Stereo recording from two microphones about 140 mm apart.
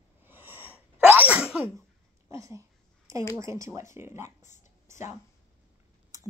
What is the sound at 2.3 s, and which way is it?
Speech, 20° right (ahead or behind).